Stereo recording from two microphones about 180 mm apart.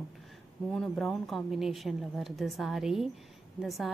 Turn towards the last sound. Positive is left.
turn(degrees=0)  # may be behind; listen again after turning